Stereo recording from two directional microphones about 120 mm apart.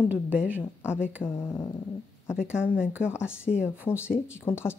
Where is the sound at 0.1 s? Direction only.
10° right (ahead or behind).